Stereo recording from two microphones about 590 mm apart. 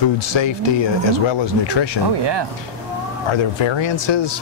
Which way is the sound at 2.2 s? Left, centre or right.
Right.